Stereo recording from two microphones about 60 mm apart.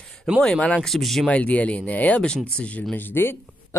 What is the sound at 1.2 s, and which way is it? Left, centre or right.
Speech, left.